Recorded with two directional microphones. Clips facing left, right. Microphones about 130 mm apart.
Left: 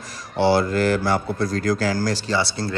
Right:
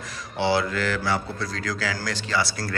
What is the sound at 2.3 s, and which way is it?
Speech, 25° left (ahead or behind).